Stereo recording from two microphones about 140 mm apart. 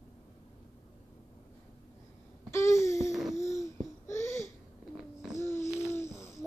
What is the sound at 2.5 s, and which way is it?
Babbling, 20° left (ahead or behind).